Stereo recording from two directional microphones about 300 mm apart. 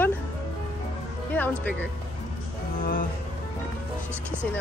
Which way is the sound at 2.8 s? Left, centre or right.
Left.